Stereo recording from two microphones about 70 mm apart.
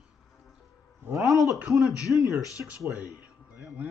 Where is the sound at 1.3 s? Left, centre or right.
Left.